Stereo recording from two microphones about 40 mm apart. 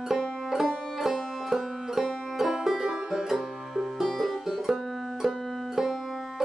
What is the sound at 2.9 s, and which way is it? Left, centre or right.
Music, centre.